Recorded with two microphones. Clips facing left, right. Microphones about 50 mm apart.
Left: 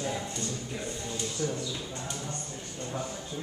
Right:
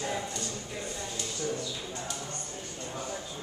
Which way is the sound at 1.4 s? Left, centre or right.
Centre.